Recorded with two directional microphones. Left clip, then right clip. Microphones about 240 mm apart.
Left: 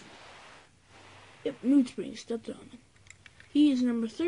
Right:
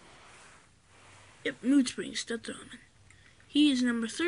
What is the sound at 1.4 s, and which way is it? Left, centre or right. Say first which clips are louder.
Speech: left 1 dB; centre.